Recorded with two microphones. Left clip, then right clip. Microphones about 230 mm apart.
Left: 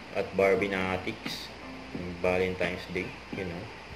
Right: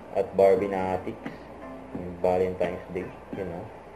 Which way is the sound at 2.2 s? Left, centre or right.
Left.